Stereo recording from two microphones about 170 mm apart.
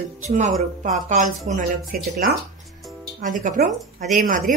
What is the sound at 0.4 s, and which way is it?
Speech, 50° right (ahead or behind).